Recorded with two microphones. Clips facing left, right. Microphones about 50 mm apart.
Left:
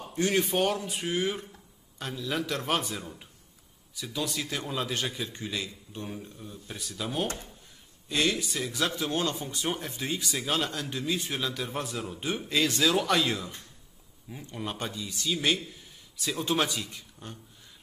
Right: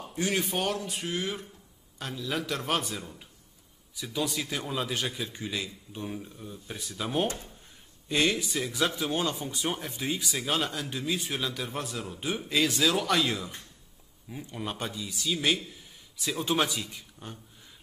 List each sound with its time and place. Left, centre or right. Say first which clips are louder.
0.1 s speech: left 3 dB; centre
8.1 s speech: right 1 dB; centre